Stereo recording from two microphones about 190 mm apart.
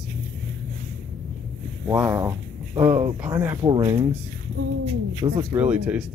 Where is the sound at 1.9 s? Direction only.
15° right (ahead or behind).